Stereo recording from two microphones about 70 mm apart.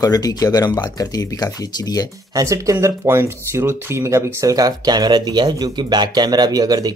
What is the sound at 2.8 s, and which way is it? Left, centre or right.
Speech, right.